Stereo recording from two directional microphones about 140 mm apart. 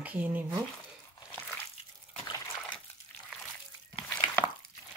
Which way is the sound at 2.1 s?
35° left (ahead or behind).